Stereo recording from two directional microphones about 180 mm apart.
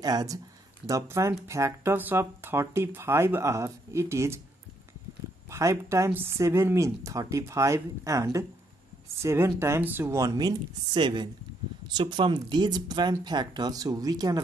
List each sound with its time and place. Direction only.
0.0 s speech: 20° right (ahead or behind)
5.5 s speech: 15° right (ahead or behind)